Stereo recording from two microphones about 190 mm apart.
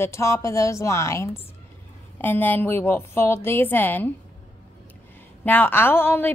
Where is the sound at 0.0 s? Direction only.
15° left (ahead or behind).